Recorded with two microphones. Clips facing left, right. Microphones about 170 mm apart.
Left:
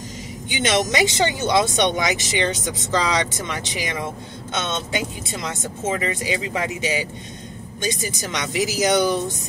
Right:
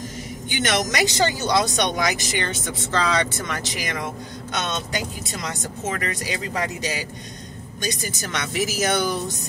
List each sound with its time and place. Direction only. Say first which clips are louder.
0.6 s speech: left 3 dB; 20° left (ahead or behind)